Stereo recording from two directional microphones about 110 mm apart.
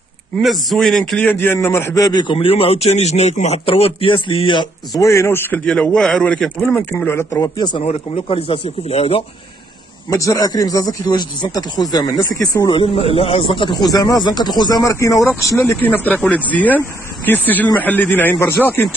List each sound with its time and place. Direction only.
0.4 s a man's voice: centre (ahead or behind)
1.3 s a man's voice: 20° left (ahead or behind)
2.0 s speech: 40° left (ahead or behind)
2.3 s a man's voice: 60° left (ahead or behind); by 3.6 s 80° left
3.6 s speech: 55° left (ahead or behind)
4.9 s a man's voice: 30° left (ahead or behind)
5.7 s speech: 10° left (ahead or behind)
7.3 s speech: 35° left (ahead or behind)
7.8 s a man's voice: 60° left (ahead or behind)
10.0 s speech: 30° left (ahead or behind)
12.7 s a man's voice: 60° left (ahead or behind)
13.9 s a man's voice: 35° left (ahead or behind)
15.8 s speech: 15° left (ahead or behind)